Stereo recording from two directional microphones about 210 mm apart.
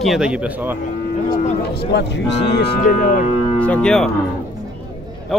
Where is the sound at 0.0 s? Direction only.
Centre (ahead or behind).